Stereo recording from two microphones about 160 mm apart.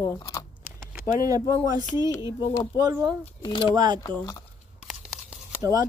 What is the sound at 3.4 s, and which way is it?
Speech, 30° left (ahead or behind).